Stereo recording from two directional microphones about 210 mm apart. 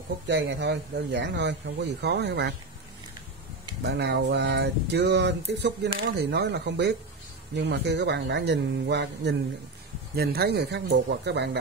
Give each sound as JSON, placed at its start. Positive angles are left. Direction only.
{"t": 0.3, "sound": "speech", "side_deg": -55}
{"t": 3.8, "sound": "speech", "side_deg": -50}